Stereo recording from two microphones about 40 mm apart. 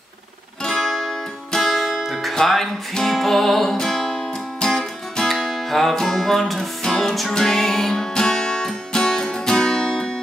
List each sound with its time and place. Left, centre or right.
0.7 s music: centre